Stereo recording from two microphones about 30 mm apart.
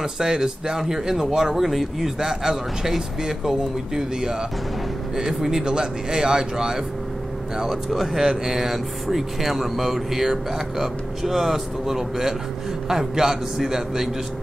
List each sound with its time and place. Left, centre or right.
0.0 s speech: centre
1.6 s speech: centre
2.0 s speech: centre
7.9 s speech: centre
8.2 s speech: centre